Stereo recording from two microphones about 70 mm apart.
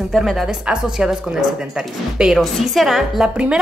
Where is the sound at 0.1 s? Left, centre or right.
Centre.